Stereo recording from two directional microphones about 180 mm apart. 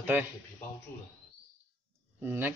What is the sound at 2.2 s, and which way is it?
Speech, 10° right (ahead or behind).